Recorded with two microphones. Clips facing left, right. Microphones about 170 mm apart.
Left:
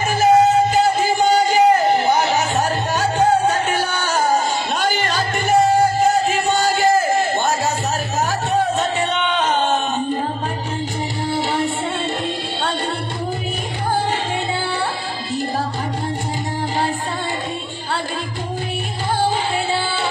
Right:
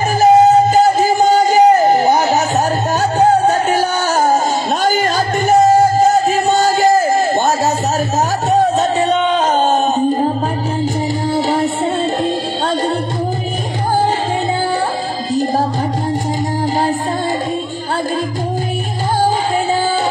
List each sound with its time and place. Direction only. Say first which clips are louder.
0.2 s music: right 5 dB; 40° right (ahead or behind)
8.5 s a sound: right 7 dB; 40° right (ahead or behind)
11.2 s music: right 4 dB; 40° right (ahead or behind)